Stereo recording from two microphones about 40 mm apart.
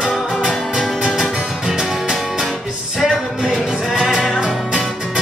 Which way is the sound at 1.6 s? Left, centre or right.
Centre.